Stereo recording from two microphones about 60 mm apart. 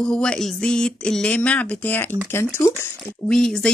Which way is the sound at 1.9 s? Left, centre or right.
Left.